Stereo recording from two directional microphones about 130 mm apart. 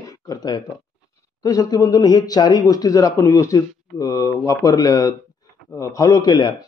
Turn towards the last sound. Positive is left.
turn(degrees=35)  # may be behind; listen again after turning